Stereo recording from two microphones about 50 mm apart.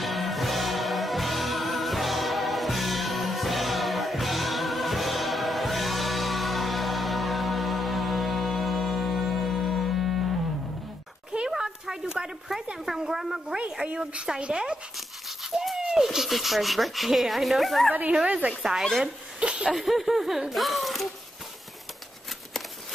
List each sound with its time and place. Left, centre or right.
0.0 s music: centre
11.3 s a sound: centre
13.6 s speech: right
15.5 s a sound: centre
15.8 s speech: centre
18.1 s speech: right
18.6 s speech: centre
19.4 s a sound: right
19.7 s speech: centre